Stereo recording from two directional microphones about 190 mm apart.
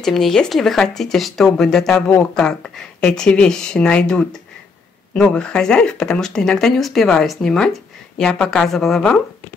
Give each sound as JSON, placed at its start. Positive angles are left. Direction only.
{"t": 0.0, "sound": "speech", "side_deg": 0}